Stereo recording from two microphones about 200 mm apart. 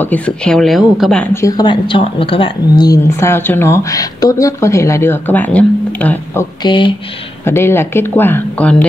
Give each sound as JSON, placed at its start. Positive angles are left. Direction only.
{"t": 0.1, "sound": "speech", "side_deg": 5}
{"t": 1.3, "sound": "speech", "side_deg": 20}
{"t": 6.6, "sound": "speech", "side_deg": 25}
{"t": 7.4, "sound": "speech", "side_deg": 10}